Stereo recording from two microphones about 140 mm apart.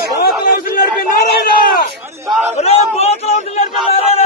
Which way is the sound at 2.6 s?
50° left (ahead or behind).